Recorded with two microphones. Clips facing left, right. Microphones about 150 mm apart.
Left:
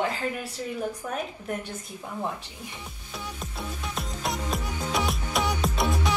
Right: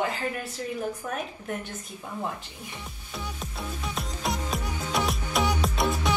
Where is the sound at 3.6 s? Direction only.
Centre (ahead or behind).